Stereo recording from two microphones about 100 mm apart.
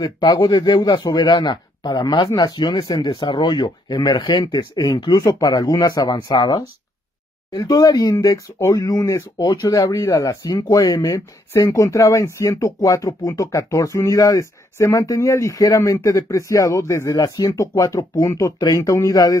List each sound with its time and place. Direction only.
0.0 s speech: 45° left (ahead or behind)